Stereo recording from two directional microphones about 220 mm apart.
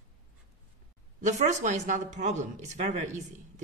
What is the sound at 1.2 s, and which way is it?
Speech, 35° right (ahead or behind).